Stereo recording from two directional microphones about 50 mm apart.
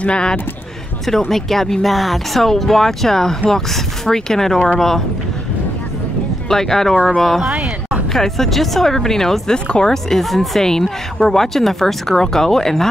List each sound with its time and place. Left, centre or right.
0.0 s speech: centre
1.3 s speech: centre
6.5 s speech: centre